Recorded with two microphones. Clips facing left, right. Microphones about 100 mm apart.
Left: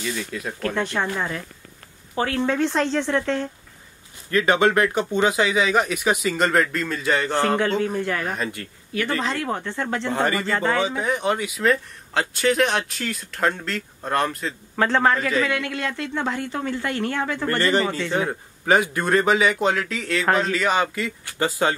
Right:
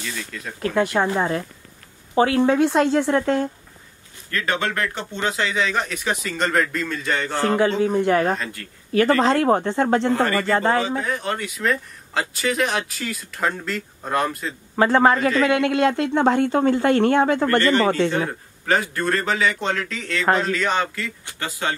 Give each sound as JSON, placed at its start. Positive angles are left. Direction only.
{"t": 0.0, "sound": "speech", "side_deg": 10}
{"t": 0.7, "sound": "speech", "side_deg": -5}
{"t": 0.9, "sound": "speech", "side_deg": -25}
{"t": 2.1, "sound": "speech", "side_deg": -15}
{"t": 4.3, "sound": "speech", "side_deg": 20}
{"t": 7.9, "sound": "speech", "side_deg": -30}
{"t": 8.4, "sound": "speech", "side_deg": 20}
{"t": 9.2, "sound": "speech", "side_deg": -35}
{"t": 10.1, "sound": "speech", "side_deg": 20}
{"t": 10.5, "sound": "speech", "side_deg": -25}
{"t": 11.0, "sound": "speech", "side_deg": 15}
{"t": 18.1, "sound": "speech", "side_deg": 15}
{"t": 21.4, "sound": "speech", "side_deg": 25}